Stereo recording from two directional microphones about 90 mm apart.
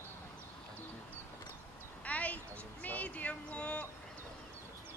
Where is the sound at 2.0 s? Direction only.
15° left (ahead or behind).